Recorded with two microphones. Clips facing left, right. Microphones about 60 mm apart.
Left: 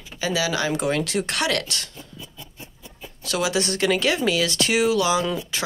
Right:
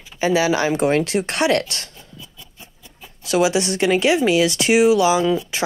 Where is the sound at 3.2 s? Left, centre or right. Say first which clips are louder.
Right 6 dB; right.